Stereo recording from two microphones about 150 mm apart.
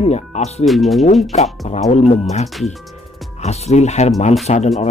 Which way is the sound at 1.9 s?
45° left (ahead or behind).